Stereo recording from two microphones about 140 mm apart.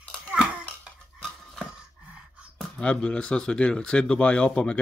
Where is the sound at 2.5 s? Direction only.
5° left (ahead or behind).